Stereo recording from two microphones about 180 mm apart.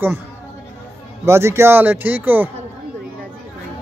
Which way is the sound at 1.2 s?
15° right (ahead or behind).